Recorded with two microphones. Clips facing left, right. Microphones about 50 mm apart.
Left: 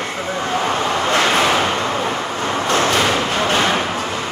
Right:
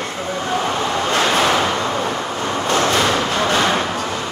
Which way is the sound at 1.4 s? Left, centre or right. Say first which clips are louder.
Even; centre.